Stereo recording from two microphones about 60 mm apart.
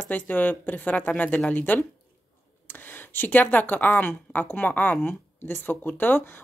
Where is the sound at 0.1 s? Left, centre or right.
Left.